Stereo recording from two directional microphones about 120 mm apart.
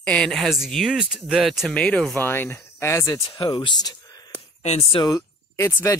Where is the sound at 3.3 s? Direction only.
40° left (ahead or behind).